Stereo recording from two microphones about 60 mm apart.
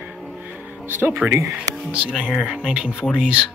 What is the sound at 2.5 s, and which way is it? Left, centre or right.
Speech, centre.